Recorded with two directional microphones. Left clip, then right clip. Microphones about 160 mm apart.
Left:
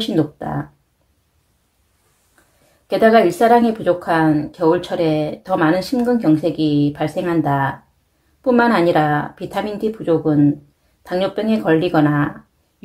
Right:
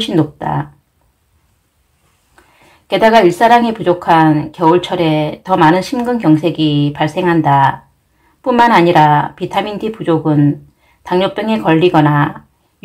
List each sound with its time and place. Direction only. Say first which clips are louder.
0.0 s speech: right 5 dB; 35° left (ahead or behind)
2.9 s speech: right 4 dB; 35° left (ahead or behind)